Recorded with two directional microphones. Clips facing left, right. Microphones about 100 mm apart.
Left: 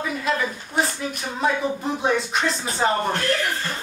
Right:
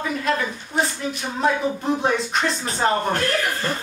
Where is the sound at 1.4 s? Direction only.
Centre (ahead or behind).